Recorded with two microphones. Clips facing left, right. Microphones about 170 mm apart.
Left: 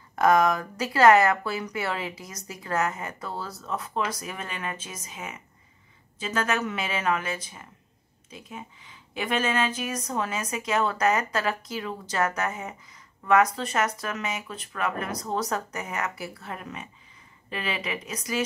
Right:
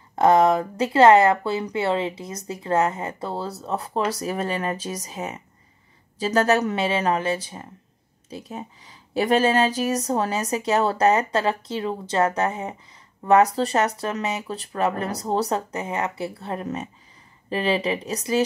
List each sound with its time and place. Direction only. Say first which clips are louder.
0.1 s speech: right 4 dB; 30° right (ahead or behind)
16.6 s speech: right 9 dB; 40° right (ahead or behind)